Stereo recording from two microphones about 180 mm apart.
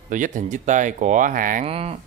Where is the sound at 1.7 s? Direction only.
35° right (ahead or behind).